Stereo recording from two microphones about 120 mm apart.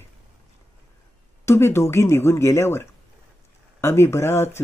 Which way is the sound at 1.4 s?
20° left (ahead or behind).